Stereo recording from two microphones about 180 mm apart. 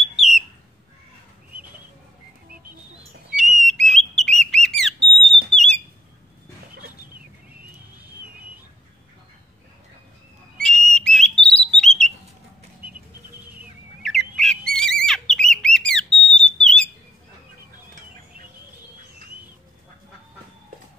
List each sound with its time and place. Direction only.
0.2 s bird: centre (ahead or behind)
3.3 s whistle: centre (ahead or behind)
3.8 s a sound: centre (ahead or behind)
10.6 s whistle: centre (ahead or behind)
11.4 s a sound: 5° left (ahead or behind)
14.0 s bird: centre (ahead or behind)